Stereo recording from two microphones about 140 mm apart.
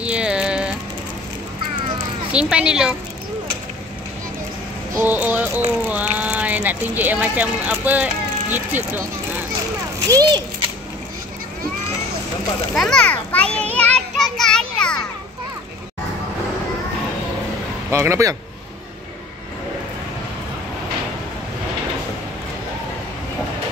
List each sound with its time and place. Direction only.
0.0 s a sound: 10° right (ahead or behind)
2.3 s a woman's voice: 5° right (ahead or behind)
5.0 s music: 10° right (ahead or behind)
5.9 s speech: 10° right (ahead or behind)
10.0 s a child's voice: 25° right (ahead or behind)
12.7 s children playing: 5° left (ahead or behind)
17.8 s a man's voice: 20° right (ahead or behind)